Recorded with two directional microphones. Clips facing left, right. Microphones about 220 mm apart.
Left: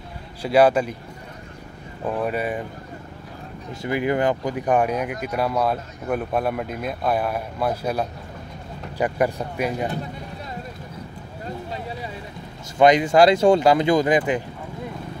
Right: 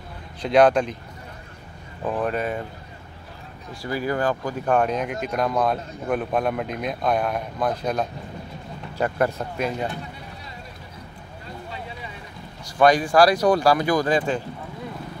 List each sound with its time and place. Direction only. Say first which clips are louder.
0.4 s speech: even; 5° left (ahead or behind)
2.0 s speech: even; 10° left (ahead or behind)
3.8 s speech: left 3 dB; 20° left (ahead or behind)
12.7 s speech: left 2 dB; 20° left (ahead or behind)